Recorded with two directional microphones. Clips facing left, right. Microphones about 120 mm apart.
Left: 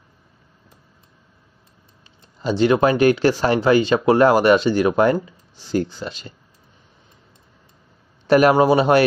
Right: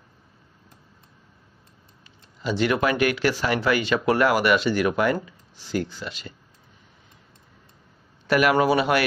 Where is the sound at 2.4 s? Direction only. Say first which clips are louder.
Left 6 dB; 30° left (ahead or behind).